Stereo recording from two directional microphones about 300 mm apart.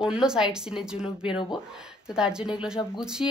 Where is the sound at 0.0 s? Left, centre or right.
Centre.